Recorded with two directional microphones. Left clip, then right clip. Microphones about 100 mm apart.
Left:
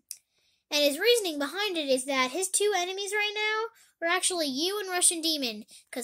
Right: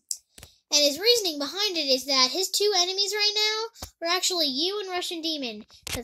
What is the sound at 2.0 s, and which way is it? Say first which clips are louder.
A child's voice: right 5 dB; 20° right (ahead or behind).